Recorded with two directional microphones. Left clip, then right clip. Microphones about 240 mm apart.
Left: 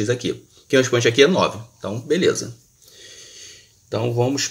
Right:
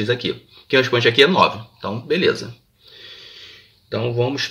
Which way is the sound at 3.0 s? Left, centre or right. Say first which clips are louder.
Right 2 dB; centre.